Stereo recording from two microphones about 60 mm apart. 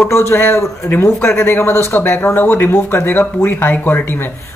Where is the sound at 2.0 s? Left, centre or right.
Left.